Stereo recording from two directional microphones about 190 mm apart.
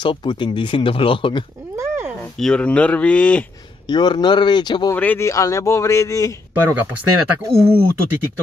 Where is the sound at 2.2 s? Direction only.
5° left (ahead or behind).